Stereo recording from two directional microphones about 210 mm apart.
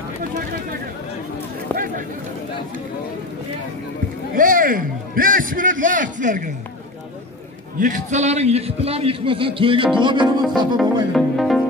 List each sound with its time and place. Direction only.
4.4 s a man's voice: 40° right (ahead or behind)
7.8 s a man's voice: 35° right (ahead or behind)
11.1 s music: centre (ahead or behind)